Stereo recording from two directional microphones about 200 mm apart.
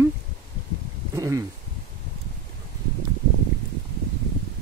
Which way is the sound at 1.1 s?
15° right (ahead or behind).